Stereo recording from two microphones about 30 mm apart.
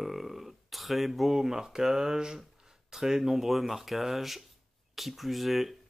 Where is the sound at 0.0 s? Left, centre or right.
Centre.